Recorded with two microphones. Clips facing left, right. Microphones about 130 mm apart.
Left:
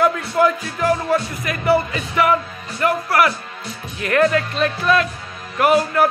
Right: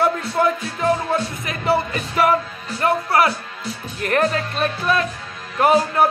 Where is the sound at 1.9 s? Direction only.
40° right (ahead or behind).